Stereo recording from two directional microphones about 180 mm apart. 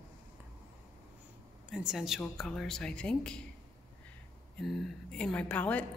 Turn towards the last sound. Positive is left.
turn(degrees=10)  # may be behind; listen again after turning